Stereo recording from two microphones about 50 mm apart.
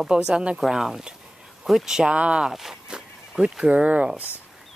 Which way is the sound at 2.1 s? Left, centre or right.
Right.